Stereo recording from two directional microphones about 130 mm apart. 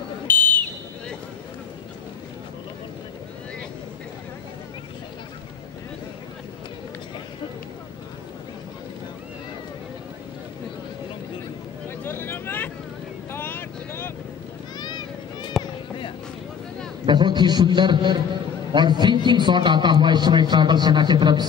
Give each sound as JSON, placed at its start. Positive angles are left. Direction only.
{"t": 0.3, "sound": "buzzer", "side_deg": 15}
{"t": 12.0, "sound": "vehicle", "side_deg": 15}
{"t": 14.8, "sound": "vehicle", "side_deg": 35}
{"t": 17.0, "sound": "a man's voice", "side_deg": -35}